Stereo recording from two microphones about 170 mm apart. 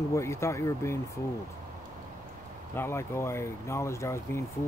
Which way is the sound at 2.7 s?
15° left (ahead or behind).